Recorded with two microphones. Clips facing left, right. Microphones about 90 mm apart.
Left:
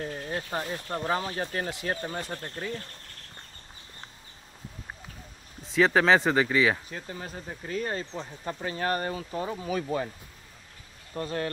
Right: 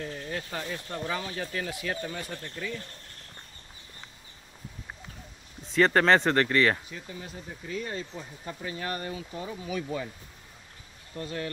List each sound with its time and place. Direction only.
0.0 s speech: 35° left (ahead or behind)
5.6 s speech: centre (ahead or behind)
6.9 s speech: 50° left (ahead or behind)
11.1 s speech: 40° left (ahead or behind)